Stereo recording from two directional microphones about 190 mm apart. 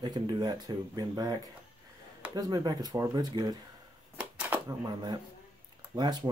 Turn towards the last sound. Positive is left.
turn(degrees=-20)  # may be behind; listen again after turning